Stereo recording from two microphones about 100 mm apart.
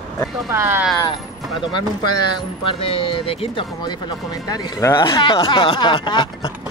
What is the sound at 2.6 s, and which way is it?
Speech, 65° left (ahead or behind).